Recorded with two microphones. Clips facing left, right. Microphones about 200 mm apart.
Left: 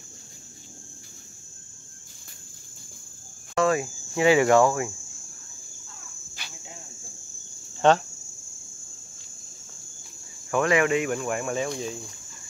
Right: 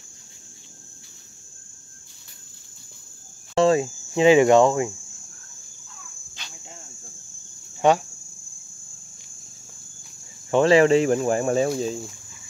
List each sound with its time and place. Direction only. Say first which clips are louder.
3.5 s speech: right 5 dB; 25° right (ahead or behind)
7.8 s speech: right 1 dB; 10° right (ahead or behind)
10.5 s speech: right 6 dB; 30° right (ahead or behind)